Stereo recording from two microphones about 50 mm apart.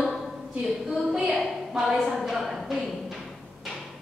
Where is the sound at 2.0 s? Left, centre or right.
Centre.